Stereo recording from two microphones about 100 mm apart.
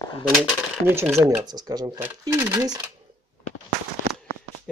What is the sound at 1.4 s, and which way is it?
Speech, 40° right (ahead or behind).